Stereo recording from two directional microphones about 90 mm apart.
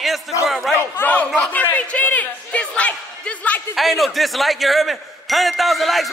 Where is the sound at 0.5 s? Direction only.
Centre (ahead or behind).